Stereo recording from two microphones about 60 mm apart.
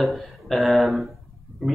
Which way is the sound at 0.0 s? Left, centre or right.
Centre.